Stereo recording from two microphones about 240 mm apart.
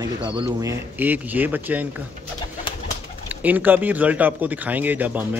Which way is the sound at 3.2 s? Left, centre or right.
Centre.